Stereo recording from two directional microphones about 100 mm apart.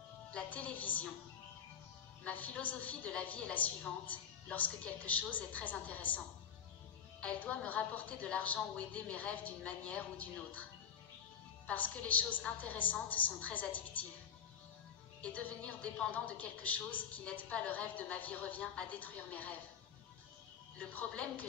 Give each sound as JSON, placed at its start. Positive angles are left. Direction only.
{"t": 0.3, "sound": "speech", "side_deg": 15}
{"t": 2.2, "sound": "a woman's voice", "side_deg": 15}
{"t": 15.2, "sound": "a woman's voice", "side_deg": 10}
{"t": 20.9, "sound": "a woman's voice", "side_deg": 15}